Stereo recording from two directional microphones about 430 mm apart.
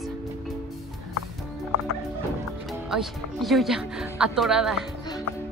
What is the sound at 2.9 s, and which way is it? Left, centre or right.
A woman's voice, centre.